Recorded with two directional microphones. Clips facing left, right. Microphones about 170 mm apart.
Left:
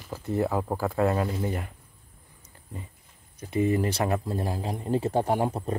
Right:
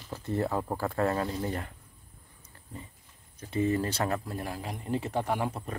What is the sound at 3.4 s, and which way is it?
Speech, 15° left (ahead or behind).